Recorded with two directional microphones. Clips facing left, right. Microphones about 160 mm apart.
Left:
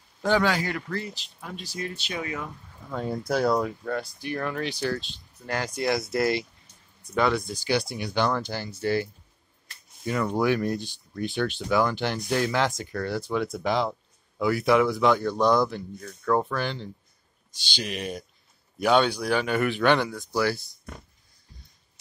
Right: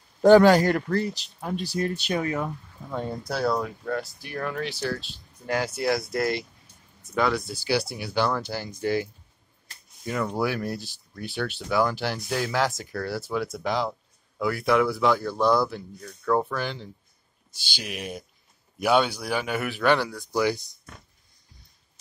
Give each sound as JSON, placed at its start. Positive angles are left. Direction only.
{"t": 0.2, "sound": "speech", "side_deg": -45}
{"t": 3.3, "sound": "speech", "side_deg": 15}
{"t": 3.8, "sound": "speech", "side_deg": 0}
{"t": 20.3, "sound": "speech", "side_deg": -20}